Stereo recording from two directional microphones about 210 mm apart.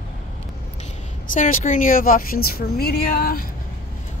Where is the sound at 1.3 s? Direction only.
40° left (ahead or behind).